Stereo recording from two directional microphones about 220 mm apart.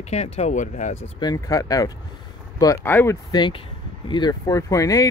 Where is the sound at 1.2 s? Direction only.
15° left (ahead or behind).